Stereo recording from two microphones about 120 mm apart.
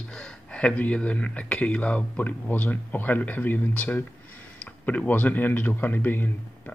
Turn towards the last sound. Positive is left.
turn(degrees=15)  # may be behind; listen again after turning